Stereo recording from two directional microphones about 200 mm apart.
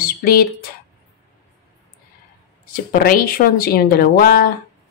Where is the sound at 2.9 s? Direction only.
45° left (ahead or behind).